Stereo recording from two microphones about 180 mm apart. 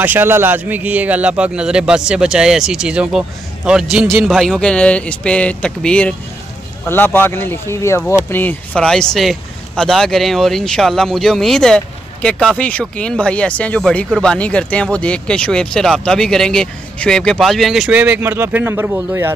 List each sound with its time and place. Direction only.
0.0 s speech: 10° right (ahead or behind)